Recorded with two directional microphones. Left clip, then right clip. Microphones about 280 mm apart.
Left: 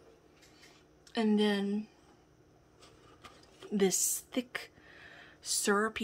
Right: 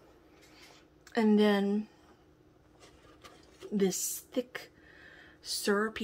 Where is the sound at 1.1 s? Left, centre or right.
Centre.